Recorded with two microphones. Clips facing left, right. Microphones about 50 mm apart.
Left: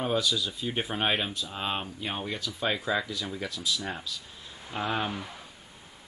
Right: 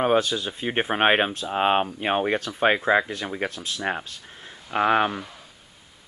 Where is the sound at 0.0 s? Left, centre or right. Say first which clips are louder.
Right 7 dB; right.